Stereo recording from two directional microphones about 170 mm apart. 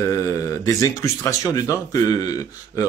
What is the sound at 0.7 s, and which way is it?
Speech, 20° left (ahead or behind).